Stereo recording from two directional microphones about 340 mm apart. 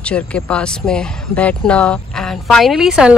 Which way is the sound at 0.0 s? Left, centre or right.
Centre.